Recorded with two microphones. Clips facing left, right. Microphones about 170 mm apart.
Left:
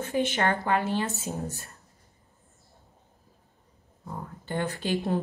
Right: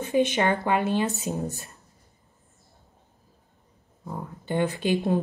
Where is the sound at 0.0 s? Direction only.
20° right (ahead or behind).